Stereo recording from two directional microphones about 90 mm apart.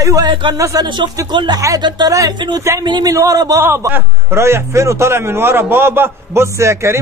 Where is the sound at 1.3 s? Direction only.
60° right (ahead or behind).